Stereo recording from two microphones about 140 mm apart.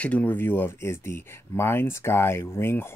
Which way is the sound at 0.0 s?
10° left (ahead or behind).